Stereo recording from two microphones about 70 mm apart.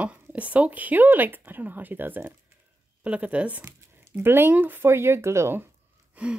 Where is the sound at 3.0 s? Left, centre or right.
Centre.